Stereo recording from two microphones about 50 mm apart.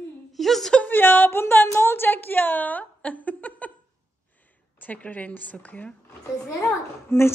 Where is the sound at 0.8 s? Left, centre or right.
Left.